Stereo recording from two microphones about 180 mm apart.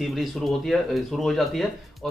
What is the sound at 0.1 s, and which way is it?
Speech, centre (ahead or behind).